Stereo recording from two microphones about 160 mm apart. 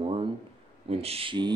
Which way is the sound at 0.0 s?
35° right (ahead or behind).